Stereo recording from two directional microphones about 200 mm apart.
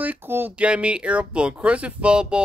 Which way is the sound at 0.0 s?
10° right (ahead or behind).